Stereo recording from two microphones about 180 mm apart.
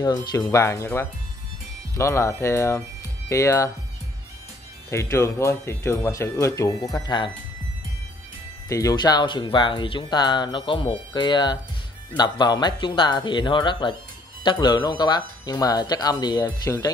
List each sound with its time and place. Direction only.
0.0 s speech: 20° left (ahead or behind)
4.8 s speech: 15° left (ahead or behind)
8.6 s speech: 20° left (ahead or behind)